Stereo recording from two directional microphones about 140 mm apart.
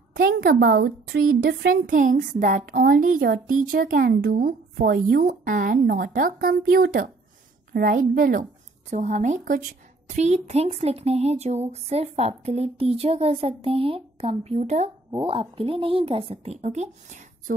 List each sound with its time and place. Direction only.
0.1 s a woman's voice: 90° right
8.9 s a woman's voice: 60° right (ahead or behind)
15.0 s a woman's voice: 35° right (ahead or behind); by 17.6 s 55° right (ahead or behind)